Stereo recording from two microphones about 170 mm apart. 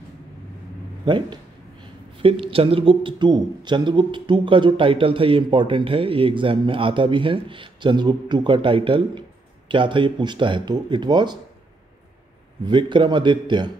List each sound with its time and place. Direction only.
1.0 s speech: 30° right (ahead or behind)
12.6 s speech: 25° right (ahead or behind)